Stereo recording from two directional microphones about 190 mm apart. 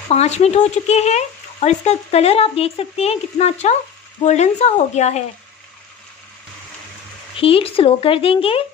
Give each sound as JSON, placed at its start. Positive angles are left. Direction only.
{"t": 0.1, "sound": "speech", "side_deg": 35}
{"t": 7.3, "sound": "speech", "side_deg": 30}